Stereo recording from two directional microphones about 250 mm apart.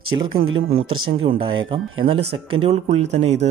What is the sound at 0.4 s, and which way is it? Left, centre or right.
Speech, right.